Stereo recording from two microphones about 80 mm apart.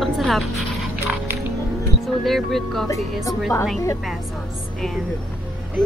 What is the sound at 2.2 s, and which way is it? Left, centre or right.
Speech, centre.